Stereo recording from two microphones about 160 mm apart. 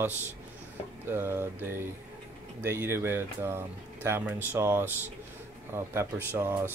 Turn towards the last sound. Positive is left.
turn(degrees=-15)  # may be behind; listen again after turning